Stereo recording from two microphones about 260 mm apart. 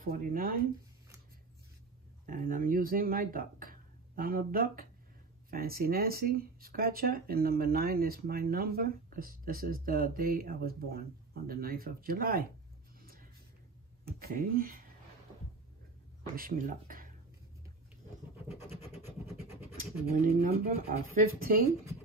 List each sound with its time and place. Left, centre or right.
0.0 s speech: right
2.2 s speech: right
13.0 s music: right
14.2 s speech: right
16.3 s speech: right
18.6 s scratch: centre
20.1 s speech: right